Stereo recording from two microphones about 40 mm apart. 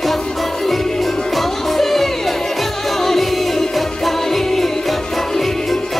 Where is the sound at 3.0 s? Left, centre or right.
Centre.